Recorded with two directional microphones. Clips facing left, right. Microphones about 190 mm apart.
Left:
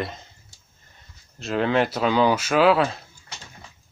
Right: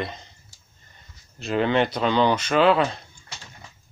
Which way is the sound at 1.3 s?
Centre (ahead or behind).